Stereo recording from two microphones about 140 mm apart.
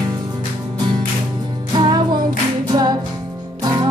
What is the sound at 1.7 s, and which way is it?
Music, 30° right (ahead or behind).